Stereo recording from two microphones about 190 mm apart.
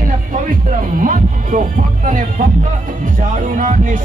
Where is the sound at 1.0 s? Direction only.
45° right (ahead or behind).